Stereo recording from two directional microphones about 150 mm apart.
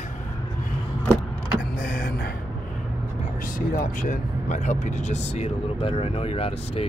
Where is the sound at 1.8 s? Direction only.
90° left.